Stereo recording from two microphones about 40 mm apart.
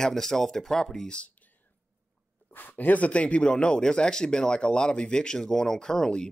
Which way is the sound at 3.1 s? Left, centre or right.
Left.